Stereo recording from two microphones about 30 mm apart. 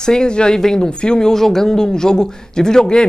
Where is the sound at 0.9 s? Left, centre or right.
Left.